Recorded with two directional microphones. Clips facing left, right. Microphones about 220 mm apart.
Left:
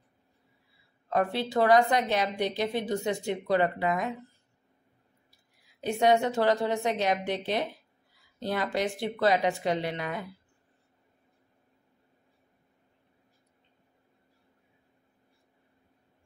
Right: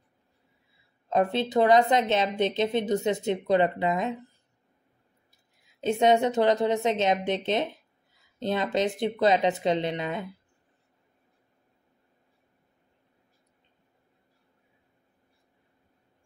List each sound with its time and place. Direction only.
1.0 s a woman's voice: 20° right (ahead or behind)
5.6 s a woman's voice: 20° right (ahead or behind)